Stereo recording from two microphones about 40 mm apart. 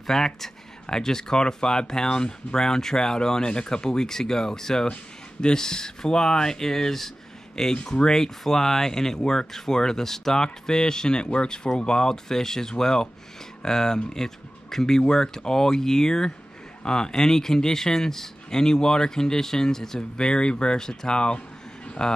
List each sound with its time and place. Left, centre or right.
0.0 s speech: centre
7.7 s speech: left
8.1 s speech: centre
21.8 s a sound: left